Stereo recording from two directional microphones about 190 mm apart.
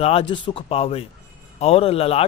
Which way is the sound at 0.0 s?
30° left (ahead or behind).